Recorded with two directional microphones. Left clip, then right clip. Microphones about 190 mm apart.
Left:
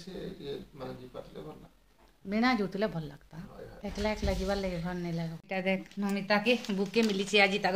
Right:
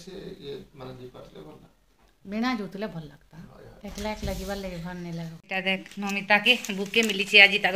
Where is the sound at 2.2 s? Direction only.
25° left (ahead or behind).